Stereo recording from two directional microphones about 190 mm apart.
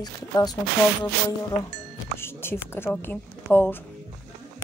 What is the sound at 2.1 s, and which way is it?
Speech, 10° left (ahead or behind).